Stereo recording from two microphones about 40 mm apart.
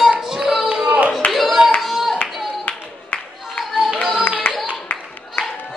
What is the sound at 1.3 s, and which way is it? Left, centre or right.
Clapping, centre.